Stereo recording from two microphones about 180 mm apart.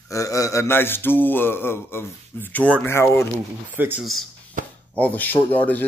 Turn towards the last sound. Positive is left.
turn(degrees=10)  # may be behind; listen again after turning